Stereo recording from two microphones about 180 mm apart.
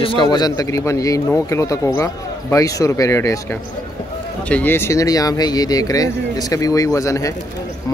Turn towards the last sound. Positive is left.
turn(degrees=20)  # may be behind; listen again after turning